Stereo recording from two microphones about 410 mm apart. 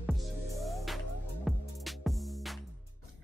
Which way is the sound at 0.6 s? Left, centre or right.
Centre.